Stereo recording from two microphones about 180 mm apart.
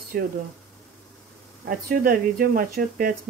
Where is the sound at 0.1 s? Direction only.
55° right (ahead or behind).